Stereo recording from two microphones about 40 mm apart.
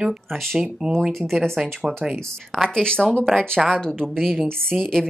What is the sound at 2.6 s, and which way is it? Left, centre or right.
Speech, centre.